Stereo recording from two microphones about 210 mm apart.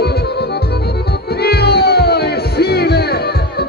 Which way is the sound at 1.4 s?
50° left (ahead or behind).